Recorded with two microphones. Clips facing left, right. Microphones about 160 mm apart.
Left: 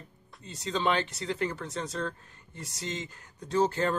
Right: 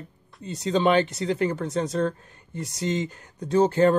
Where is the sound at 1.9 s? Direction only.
45° right (ahead or behind).